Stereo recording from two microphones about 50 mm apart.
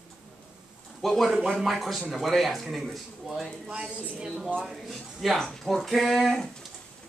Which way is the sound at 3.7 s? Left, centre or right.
Centre.